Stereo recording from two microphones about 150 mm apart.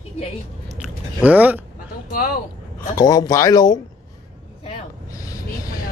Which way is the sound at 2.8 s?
25° left (ahead or behind).